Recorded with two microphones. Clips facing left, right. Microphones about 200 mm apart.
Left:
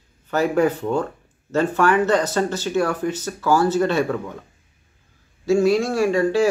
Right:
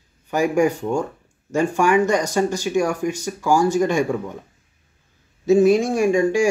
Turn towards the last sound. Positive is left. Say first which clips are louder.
# right 1 dB
turn(degrees=-15)  # may be behind; listen again after turning